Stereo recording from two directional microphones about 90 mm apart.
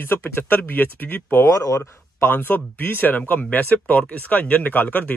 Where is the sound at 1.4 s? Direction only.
35° left (ahead or behind).